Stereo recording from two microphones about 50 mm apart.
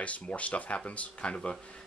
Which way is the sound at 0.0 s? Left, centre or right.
Left.